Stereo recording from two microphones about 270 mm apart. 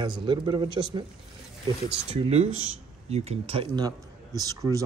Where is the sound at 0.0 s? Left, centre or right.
Centre.